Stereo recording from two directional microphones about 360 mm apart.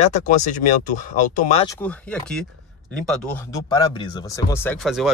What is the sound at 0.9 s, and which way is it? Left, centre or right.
Speech, left.